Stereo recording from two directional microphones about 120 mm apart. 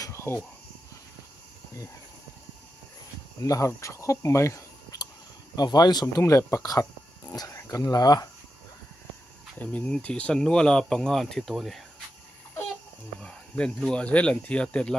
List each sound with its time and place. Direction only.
0.0 s a sound: 25° left (ahead or behind)
3.3 s speech: 30° left (ahead or behind)
5.6 s speech: 35° left (ahead or behind)
9.6 s speech: 10° left (ahead or behind)
13.2 s speech: 5° left (ahead or behind)